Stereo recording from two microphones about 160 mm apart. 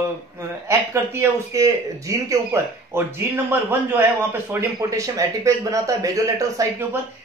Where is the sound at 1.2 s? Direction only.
20° right (ahead or behind).